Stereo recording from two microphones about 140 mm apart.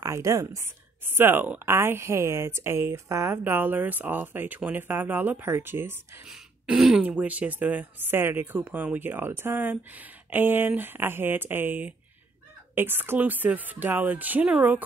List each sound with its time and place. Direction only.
0.0 s speech: 25° right (ahead or behind)
6.2 s speech: 5° right (ahead or behind)